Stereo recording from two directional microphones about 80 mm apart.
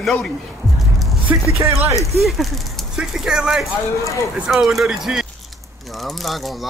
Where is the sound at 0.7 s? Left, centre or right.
Centre.